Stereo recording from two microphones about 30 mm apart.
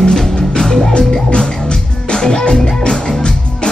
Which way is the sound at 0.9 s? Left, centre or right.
Left.